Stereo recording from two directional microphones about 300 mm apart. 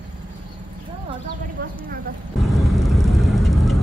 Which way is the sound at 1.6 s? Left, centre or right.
Right.